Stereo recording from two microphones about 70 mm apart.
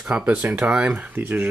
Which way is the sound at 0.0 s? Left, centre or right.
Centre.